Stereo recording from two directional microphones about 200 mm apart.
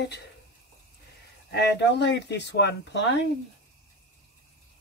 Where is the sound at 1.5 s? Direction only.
60° left (ahead or behind).